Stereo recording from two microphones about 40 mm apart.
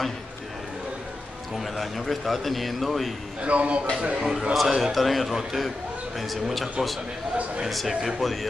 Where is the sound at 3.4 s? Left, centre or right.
Right.